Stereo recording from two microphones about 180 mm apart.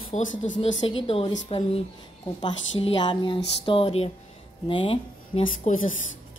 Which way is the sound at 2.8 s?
30° left (ahead or behind).